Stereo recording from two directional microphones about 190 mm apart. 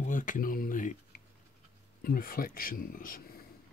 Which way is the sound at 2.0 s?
50° left (ahead or behind).